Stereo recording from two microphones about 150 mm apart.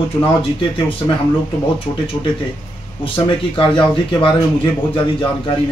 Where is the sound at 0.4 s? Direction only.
35° left (ahead or behind).